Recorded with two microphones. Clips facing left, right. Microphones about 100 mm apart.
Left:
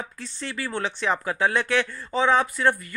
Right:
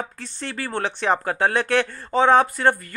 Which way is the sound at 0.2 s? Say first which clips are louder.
Right 1 dB; 55° right (ahead or behind).